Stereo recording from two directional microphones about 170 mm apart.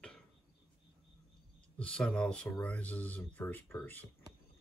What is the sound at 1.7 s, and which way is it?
Speech, 5° left (ahead or behind).